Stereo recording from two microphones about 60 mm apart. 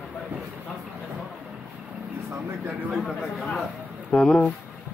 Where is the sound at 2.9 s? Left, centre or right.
Centre.